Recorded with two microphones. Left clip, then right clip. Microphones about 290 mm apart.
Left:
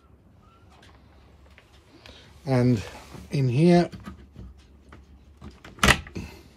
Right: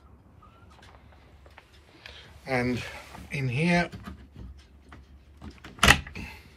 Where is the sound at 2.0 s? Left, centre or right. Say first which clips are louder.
Right 2 dB; centre.